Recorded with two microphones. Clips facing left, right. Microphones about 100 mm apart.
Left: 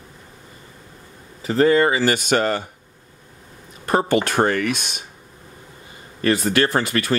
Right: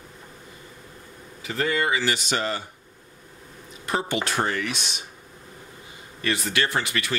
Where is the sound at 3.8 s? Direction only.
50° left (ahead or behind).